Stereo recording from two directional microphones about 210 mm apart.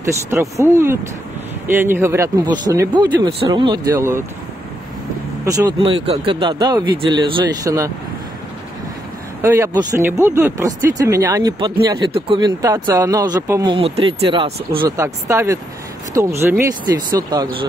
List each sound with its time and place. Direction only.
0.0 s speech: 15° right (ahead or behind)
5.4 s speech: 15° right (ahead or behind)
5.8 s speech: 25° right (ahead or behind)
9.4 s speech: 15° right (ahead or behind)